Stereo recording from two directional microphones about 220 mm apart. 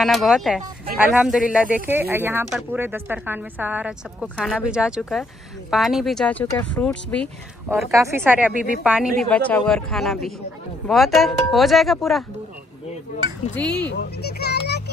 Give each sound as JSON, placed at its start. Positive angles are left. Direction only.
{"t": 0.0, "sound": "speech", "side_deg": 0}
{"t": 7.7, "sound": "speech", "side_deg": -10}
{"t": 13.6, "sound": "speech", "side_deg": 5}
{"t": 13.8, "sound": "speech", "side_deg": 50}